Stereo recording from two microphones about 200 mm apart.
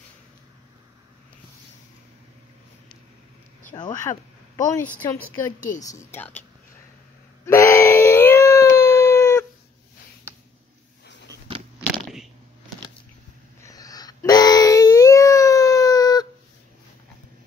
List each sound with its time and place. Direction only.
3.7 s speech: 20° left (ahead or behind)
7.4 s wail: 15° left (ahead or behind)
13.6 s a sound: 15° left (ahead or behind)